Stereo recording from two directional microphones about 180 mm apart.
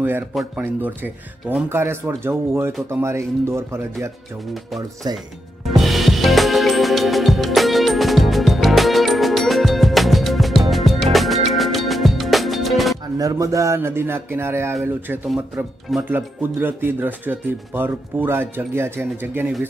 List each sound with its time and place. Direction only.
0.3 s speech: 5° right (ahead or behind)
5.1 s speech: 20° right (ahead or behind)
5.7 s music: centre (ahead or behind)
13.2 s speech: 20° right (ahead or behind)